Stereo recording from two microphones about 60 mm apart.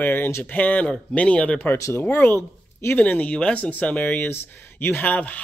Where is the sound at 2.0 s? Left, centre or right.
Left.